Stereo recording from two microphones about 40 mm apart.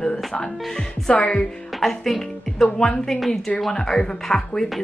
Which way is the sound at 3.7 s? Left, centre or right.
Centre.